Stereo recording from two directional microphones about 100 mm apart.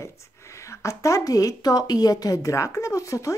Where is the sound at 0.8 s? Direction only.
30° left (ahead or behind).